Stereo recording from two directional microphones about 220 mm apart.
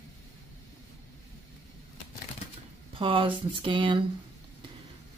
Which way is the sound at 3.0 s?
25° right (ahead or behind).